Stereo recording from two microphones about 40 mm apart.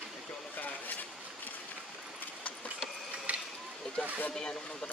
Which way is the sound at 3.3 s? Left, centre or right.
Right.